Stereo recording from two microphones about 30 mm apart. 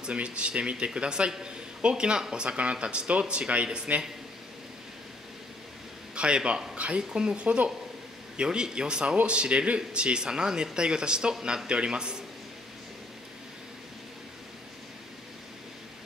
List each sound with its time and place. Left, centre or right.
0.1 s speech: right
6.1 s speech: right